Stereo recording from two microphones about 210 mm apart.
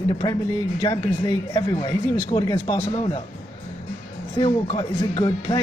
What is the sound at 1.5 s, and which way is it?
Speech, 20° left (ahead or behind).